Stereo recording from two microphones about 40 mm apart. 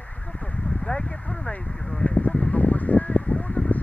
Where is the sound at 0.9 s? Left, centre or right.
Left.